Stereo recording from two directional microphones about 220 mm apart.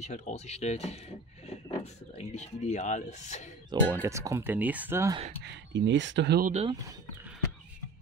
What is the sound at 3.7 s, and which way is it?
Speech, 20° right (ahead or behind).